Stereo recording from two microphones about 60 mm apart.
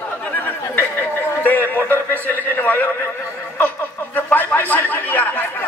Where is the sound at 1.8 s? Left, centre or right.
Left.